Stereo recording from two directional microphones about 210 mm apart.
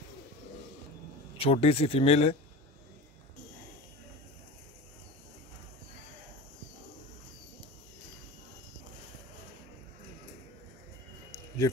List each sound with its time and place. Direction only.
1.4 s speech: 30° left (ahead or behind)
11.6 s speech: 15° left (ahead or behind)